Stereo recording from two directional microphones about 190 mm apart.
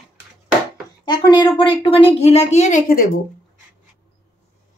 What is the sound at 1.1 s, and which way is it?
A woman's voice, 25° left (ahead or behind).